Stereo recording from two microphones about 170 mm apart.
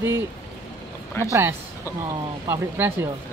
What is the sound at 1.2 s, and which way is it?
Speech, 15° left (ahead or behind).